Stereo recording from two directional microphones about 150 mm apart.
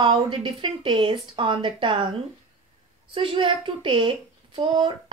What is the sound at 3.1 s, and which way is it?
A woman's voice, 35° right (ahead or behind).